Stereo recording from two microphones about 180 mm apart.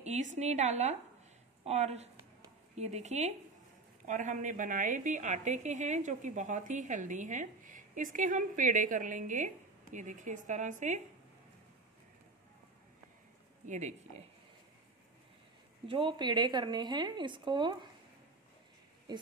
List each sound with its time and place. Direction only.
0.0 s a woman's voice: 40° right (ahead or behind)
13.7 s speech: 40° right (ahead or behind)
15.9 s a woman's voice: 25° right (ahead or behind)